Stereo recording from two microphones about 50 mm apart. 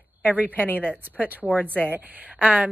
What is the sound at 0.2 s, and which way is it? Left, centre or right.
Speech, left.